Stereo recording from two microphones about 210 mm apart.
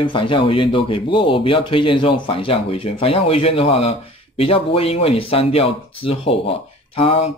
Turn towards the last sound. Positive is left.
turn(degrees=25)  # may be behind; listen again after turning